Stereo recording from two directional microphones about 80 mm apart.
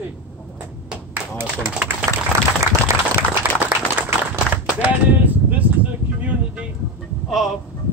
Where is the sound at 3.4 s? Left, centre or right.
Right.